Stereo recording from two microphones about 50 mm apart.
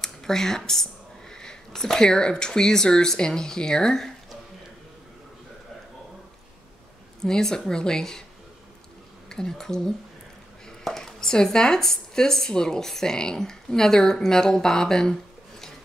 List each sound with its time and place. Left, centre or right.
0.0 s speech: centre
7.2 s speech: centre
9.3 s speech: centre